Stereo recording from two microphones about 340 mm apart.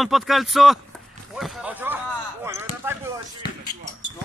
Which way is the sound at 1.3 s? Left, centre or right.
Centre.